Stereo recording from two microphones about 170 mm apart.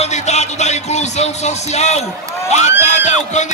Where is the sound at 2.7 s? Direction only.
45° left (ahead or behind).